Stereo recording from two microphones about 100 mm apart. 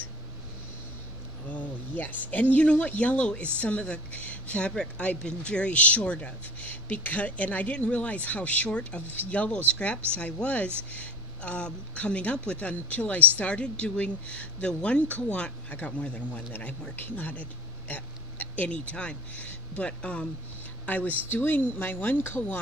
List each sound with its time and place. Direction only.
1.5 s speech: 15° left (ahead or behind)